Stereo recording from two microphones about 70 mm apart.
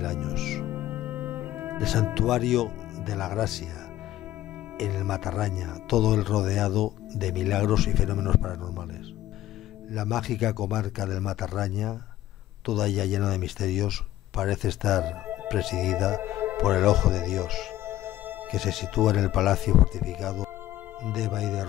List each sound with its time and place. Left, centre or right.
0.0 s music: centre
0.7 s cello: right
1.8 s speech: centre
4.7 s speech: centre
9.9 s speech: centre